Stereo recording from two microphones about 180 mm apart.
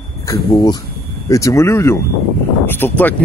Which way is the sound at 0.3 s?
25° left (ahead or behind).